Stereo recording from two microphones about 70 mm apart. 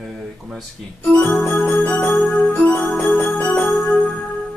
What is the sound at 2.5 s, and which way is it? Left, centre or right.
Organ, left.